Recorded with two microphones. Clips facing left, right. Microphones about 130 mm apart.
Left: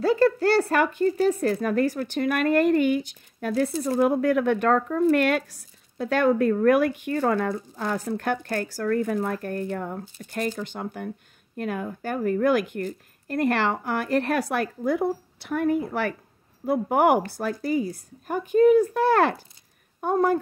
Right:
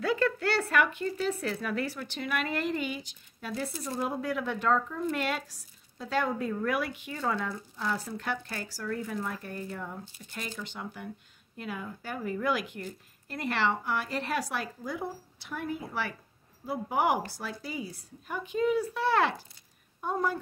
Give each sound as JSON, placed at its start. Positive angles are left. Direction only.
{"t": 0.0, "sound": "speech", "side_deg": 35}